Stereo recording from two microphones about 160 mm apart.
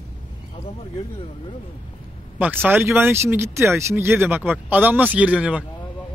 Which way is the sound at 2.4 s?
10° right (ahead or behind).